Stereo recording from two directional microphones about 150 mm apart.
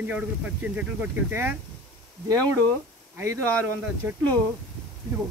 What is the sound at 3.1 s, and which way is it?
Speech, 15° right (ahead or behind).